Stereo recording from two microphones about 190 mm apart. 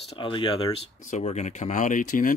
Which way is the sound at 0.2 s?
25° left (ahead or behind).